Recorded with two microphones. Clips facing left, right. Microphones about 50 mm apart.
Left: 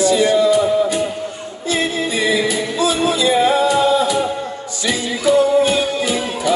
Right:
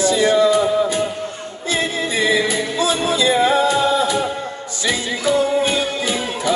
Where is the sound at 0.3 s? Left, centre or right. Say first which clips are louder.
Left 1 dB; right.